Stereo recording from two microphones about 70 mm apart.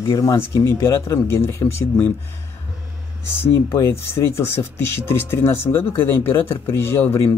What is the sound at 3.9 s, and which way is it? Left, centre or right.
Speech, left.